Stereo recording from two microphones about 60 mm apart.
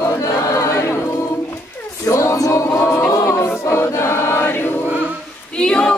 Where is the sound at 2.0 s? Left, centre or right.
Left.